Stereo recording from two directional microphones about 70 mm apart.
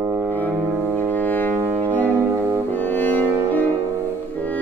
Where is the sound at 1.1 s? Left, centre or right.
Left.